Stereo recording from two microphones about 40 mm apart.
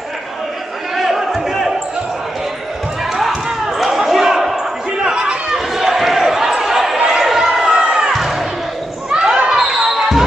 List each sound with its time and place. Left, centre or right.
0.9 s a sound: centre
3.4 s basketball bounce: centre
5.0 s chatter: centre
5.8 s basketball bounce: centre
7.7 s music: right
8.1 s basketball bounce: centre
9.1 s basketball bounce: centre